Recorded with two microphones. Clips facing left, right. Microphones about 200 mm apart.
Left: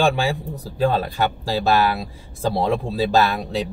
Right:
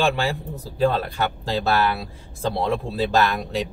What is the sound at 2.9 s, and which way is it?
Speech, 15° left (ahead or behind).